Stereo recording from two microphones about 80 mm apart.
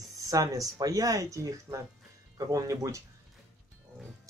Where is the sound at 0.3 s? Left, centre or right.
Right.